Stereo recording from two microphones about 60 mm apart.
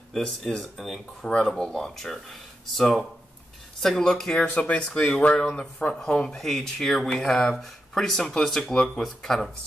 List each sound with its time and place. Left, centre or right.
0.1 s speech: centre
4.5 s speech: left
4.7 s speech: centre